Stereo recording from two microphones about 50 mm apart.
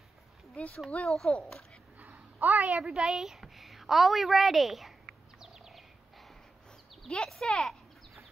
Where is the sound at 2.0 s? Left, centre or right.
Right.